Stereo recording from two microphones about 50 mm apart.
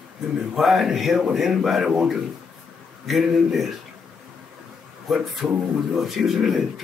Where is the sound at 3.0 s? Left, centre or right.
Centre.